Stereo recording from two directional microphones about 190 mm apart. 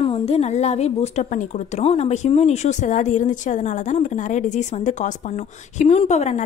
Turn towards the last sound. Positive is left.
turn(degrees=35)  # may be behind; listen again after turning